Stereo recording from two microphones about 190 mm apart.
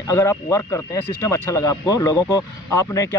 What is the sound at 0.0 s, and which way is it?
Speech, 15° left (ahead or behind).